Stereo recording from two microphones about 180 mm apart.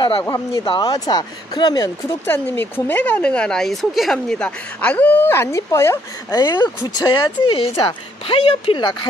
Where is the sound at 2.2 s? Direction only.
10° left (ahead or behind).